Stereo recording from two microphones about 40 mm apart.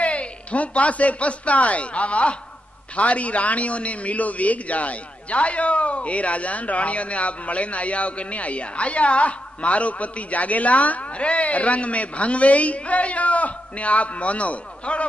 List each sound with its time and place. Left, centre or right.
0.0 s a man's voice: left